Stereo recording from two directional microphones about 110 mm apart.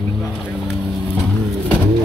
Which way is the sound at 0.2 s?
5° right (ahead or behind).